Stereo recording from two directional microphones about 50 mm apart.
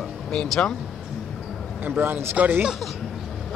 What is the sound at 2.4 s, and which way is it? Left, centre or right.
Speech, right.